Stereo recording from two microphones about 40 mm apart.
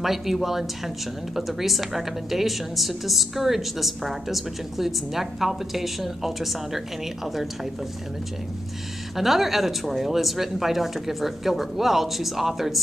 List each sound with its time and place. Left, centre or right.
0.0 s speech: centre
9.1 s speech: centre